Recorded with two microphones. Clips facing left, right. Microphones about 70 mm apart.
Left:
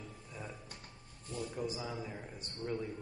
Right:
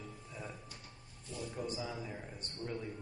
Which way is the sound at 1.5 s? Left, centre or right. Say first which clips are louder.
Right 1 dB; centre.